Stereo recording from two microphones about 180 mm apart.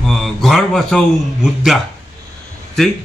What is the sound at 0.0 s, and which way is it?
A man's voice, centre (ahead or behind).